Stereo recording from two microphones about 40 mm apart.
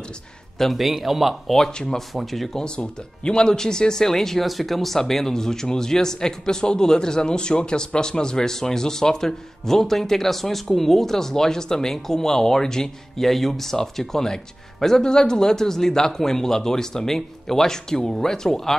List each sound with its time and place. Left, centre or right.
0.6 s a man's voice: centre
1.7 s speech: left
2.0 s a man's voice: centre
2.6 s speech: left
13.2 s speech: centre